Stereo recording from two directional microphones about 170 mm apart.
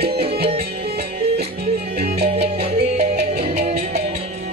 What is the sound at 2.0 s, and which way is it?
Music, 75° right (ahead or behind).